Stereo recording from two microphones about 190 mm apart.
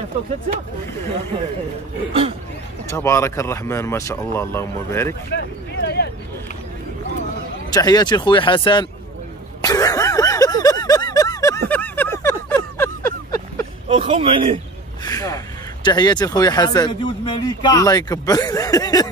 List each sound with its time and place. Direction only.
2.9 s speech: 15° left (ahead or behind)
5.3 s a sound: 60° left (ahead or behind)
7.7 s speech: 20° left (ahead or behind)
9.6 s a sound: 20° left (ahead or behind)
13.8 s speech: 30° right (ahead or behind)
15.0 s speech: 20° left (ahead or behind)